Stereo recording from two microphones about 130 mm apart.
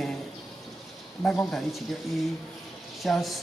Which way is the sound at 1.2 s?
5° left (ahead or behind).